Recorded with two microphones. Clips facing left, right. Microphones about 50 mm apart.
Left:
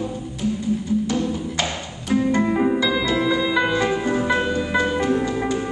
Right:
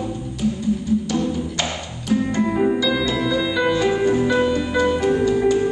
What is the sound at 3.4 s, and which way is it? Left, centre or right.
Music, left.